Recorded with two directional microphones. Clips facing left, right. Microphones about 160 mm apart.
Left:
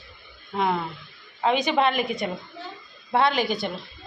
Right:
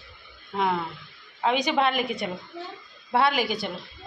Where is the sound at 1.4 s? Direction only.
5° right (ahead or behind).